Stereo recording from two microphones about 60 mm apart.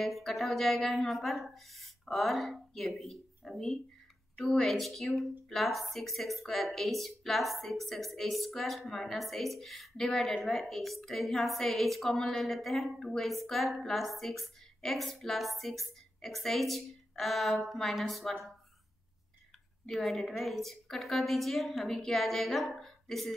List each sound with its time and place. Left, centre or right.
0.0 s speech: centre
19.9 s speech: centre